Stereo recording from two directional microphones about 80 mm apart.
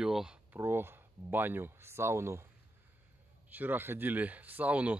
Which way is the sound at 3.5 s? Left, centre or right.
Right.